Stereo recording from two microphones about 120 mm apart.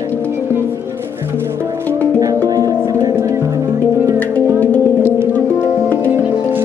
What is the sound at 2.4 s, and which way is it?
Music, 30° right (ahead or behind).